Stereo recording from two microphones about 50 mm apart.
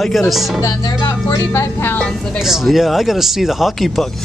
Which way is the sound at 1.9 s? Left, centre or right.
Centre.